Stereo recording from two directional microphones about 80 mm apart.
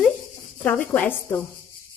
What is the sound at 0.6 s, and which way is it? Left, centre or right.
Speech, centre.